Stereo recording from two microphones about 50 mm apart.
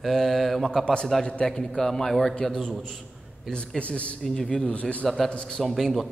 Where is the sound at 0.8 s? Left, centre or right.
Centre.